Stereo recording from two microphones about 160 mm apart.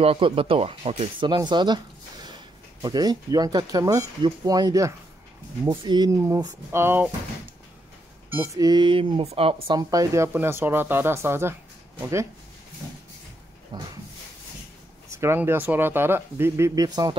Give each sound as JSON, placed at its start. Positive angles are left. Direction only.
{"t": 0.0, "sound": "speech", "side_deg": -35}
{"t": 2.8, "sound": "speech", "side_deg": -25}
{"t": 8.5, "sound": "speech", "side_deg": -25}
{"t": 9.7, "sound": "speech", "side_deg": -25}
{"t": 13.7, "sound": "speech", "side_deg": -25}
{"t": 15.0, "sound": "speech", "side_deg": -15}